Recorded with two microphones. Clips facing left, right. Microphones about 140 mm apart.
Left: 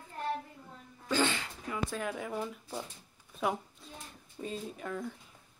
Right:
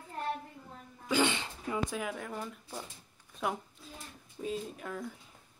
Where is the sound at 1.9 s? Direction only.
5° right (ahead or behind).